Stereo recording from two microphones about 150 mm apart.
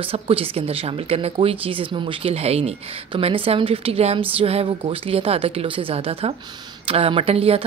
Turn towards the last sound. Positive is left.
turn(degrees=-40)  # may be behind; listen again after turning